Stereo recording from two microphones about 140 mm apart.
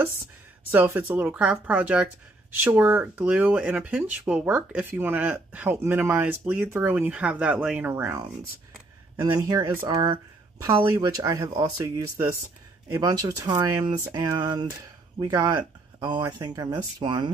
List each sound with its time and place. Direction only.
0.7 s speech: 15° right (ahead or behind)
7.9 s speech: 20° right (ahead or behind)
9.2 s speech: 25° right (ahead or behind)
9.8 s speech: 35° right (ahead or behind)
10.6 s speech: 20° right (ahead or behind); by 17.3 s 35° right (ahead or behind)